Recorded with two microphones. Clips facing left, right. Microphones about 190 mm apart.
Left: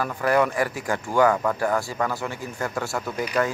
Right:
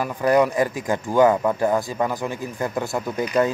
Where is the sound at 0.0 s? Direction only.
15° right (ahead or behind).